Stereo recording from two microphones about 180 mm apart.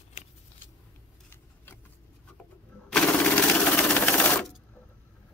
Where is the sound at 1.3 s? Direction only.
10° left (ahead or behind).